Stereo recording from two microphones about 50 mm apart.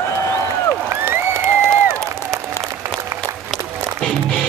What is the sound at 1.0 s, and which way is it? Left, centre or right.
Applause, right.